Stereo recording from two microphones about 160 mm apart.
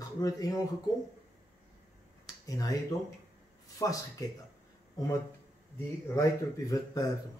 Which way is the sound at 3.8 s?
20° left (ahead or behind).